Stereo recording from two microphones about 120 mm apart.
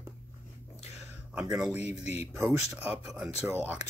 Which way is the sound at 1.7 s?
65° left (ahead or behind).